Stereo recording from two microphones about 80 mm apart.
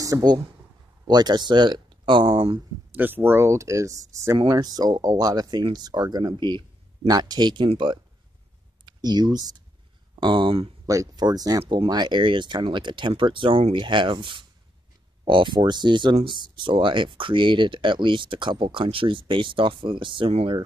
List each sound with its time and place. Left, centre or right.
0.0 s speech: right
2.9 s speech: right
4.5 s speech: right
8.8 s speech: right
10.1 s speech: right
10.9 s speech: right
15.2 s speech: right